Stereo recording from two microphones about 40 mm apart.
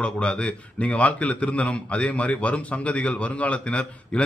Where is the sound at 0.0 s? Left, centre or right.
Left.